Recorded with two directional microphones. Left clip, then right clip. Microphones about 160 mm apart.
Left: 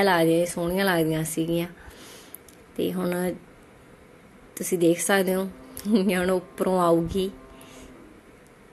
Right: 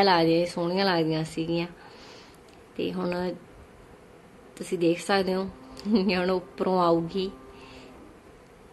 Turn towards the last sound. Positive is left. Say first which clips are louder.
# even
turn(degrees=20)  # may be behind; listen again after turning